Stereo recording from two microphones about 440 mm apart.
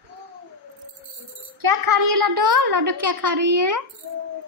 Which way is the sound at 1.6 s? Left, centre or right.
Right.